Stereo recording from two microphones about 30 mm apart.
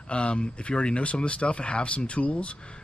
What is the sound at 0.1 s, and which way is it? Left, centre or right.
Speech, left.